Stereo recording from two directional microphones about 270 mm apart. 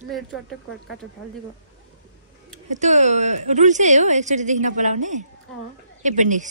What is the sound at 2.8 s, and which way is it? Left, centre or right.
A woman's voice, right.